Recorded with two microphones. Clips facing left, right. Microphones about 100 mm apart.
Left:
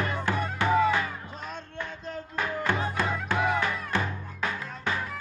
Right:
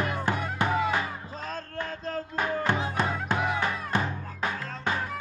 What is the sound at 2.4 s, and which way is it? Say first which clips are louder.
Music: even; 20° right (ahead or behind).